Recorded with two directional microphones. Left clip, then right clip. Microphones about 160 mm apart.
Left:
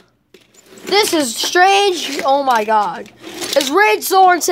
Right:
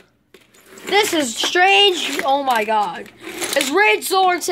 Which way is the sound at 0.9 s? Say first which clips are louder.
Left 2 dB; 30° left (ahead or behind).